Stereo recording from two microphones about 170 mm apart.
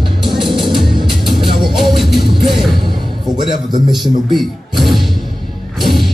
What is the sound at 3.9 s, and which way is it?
A man's voice, centre (ahead or behind).